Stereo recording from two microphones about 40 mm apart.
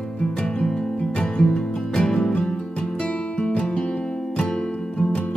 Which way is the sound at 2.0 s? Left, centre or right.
Centre.